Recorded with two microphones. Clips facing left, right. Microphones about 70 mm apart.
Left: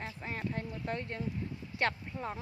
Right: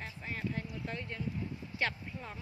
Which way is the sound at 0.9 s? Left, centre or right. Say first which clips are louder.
Left 3 dB; left.